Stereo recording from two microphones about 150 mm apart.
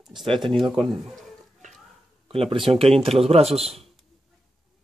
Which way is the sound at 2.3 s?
40° right (ahead or behind).